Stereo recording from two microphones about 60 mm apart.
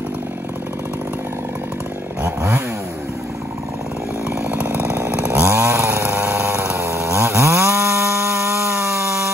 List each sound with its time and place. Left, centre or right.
2.2 s chainsaw: right
4.5 s chainsaw: right
5.5 s chainsaw: right
6.0 s a sound: right
6.6 s chainsaw: right